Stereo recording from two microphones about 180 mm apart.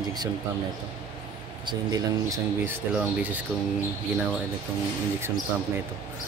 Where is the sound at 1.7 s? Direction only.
20° right (ahead or behind).